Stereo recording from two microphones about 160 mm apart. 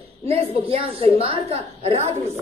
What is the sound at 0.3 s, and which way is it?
A woman's voice, 35° right (ahead or behind).